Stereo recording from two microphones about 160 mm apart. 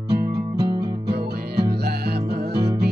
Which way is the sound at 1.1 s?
90° right.